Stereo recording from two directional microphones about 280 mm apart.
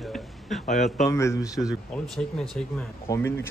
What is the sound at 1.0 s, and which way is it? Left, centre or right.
Speech, centre.